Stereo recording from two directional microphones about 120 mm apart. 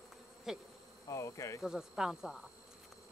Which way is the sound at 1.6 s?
5° right (ahead or behind).